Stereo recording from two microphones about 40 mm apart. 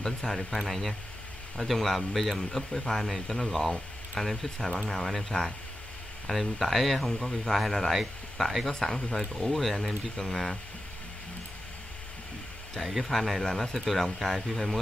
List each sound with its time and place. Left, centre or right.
0.0 s speech: centre
5.3 s speech: left
6.2 s speech: centre
8.7 s speech: centre
9.3 s speech: centre
10.2 s speech: centre
13.0 s speech: centre